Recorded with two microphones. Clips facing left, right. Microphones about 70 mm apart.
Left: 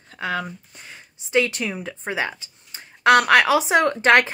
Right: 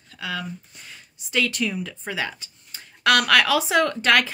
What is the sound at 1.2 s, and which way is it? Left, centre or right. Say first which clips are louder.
Speech: left 3 dB; left.